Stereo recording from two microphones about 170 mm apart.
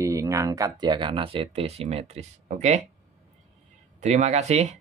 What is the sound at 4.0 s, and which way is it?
Speech, 40° right (ahead or behind).